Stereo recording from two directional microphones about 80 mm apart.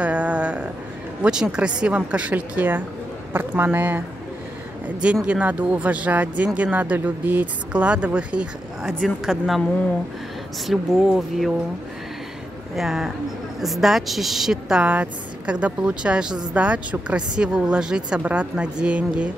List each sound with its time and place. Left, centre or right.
0.0 s a sound: centre
1.2 s speech: centre
8.8 s speech: centre
10.7 s speech: centre
12.7 s speech: centre